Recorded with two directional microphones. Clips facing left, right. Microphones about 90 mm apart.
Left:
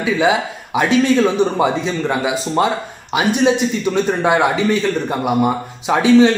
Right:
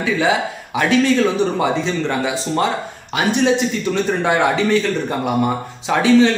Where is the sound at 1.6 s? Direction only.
15° left (ahead or behind).